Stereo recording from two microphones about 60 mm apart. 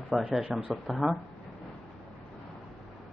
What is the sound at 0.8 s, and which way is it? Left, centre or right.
Speech, centre.